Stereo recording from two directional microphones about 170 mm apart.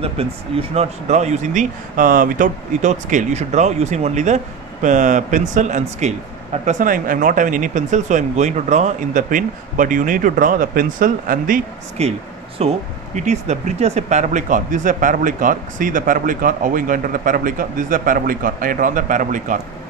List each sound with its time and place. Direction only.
0.0 s speech: 35° right (ahead or behind); by 11.6 s 55° right (ahead or behind)
12.0 s speech: 40° right (ahead or behind)